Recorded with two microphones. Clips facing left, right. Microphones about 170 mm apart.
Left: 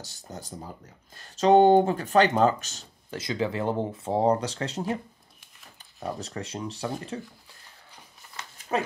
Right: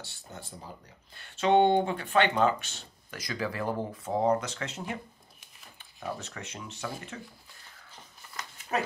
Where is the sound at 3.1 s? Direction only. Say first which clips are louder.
Left 6 dB; 25° left (ahead or behind).